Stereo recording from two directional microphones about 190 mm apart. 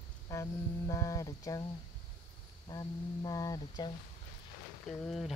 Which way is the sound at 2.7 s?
20° left (ahead or behind).